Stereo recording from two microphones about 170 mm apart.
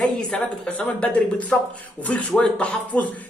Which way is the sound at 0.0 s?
5° left (ahead or behind).